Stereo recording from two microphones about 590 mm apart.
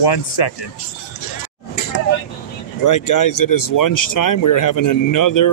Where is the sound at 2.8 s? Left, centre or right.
Left.